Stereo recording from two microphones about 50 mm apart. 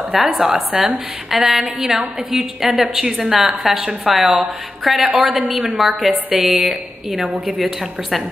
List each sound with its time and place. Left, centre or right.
0.1 s a woman's voice: centre